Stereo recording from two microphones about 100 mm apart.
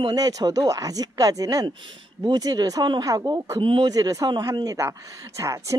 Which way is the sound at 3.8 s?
40° right (ahead or behind).